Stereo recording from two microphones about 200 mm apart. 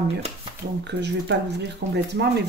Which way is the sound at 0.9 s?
60° right (ahead or behind).